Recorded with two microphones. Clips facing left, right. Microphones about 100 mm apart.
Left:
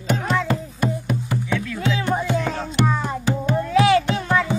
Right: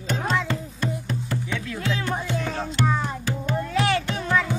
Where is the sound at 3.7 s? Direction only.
5° left (ahead or behind).